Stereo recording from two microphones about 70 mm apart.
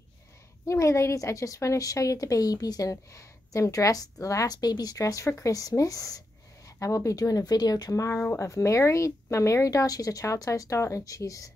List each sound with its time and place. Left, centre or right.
0.7 s a woman's voice: left
4.9 s a woman's voice: left
7.9 s a woman's voice: left